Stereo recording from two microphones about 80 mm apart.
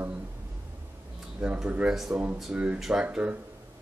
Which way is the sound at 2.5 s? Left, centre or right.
Centre.